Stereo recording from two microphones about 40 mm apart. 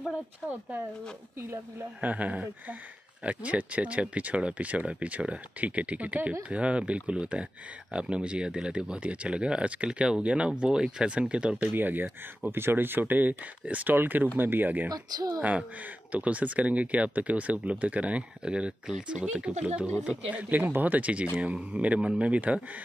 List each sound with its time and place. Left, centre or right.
0.5 s speech: right
2.0 s speech: right
11.6 s speech: right
16.1 s speech: right
18.4 s speech: right